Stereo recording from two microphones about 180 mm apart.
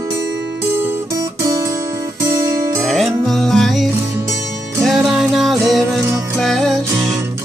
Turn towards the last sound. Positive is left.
turn(degrees=0)  # may be behind; listen again after turning